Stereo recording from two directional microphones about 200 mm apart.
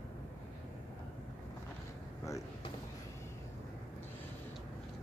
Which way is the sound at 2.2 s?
15° left (ahead or behind).